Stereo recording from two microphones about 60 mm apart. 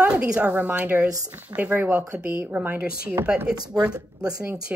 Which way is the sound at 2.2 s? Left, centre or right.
Right.